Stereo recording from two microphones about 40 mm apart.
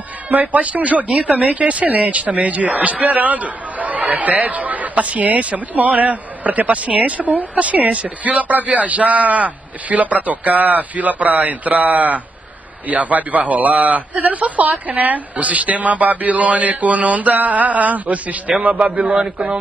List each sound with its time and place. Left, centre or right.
0.3 s speech: right